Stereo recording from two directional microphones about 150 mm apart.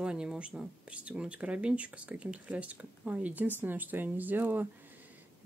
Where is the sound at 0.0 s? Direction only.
5° right (ahead or behind).